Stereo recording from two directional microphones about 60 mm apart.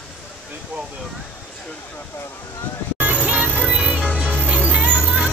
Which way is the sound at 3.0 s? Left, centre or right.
Right.